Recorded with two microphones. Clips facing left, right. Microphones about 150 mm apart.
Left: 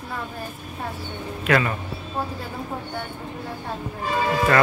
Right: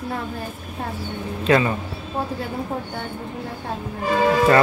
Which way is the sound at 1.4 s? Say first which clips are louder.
Right 3 dB; 25° right (ahead or behind).